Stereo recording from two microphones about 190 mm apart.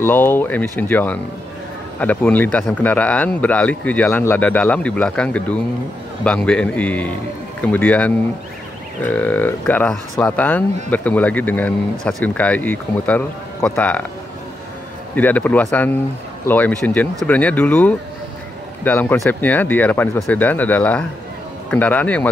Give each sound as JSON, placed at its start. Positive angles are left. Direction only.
{"t": 0.0, "sound": "speech", "side_deg": 10}
{"t": 15.1, "sound": "speech", "side_deg": 10}